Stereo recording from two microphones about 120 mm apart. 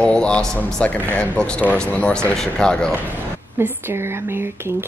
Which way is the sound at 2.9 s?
15° right (ahead or behind).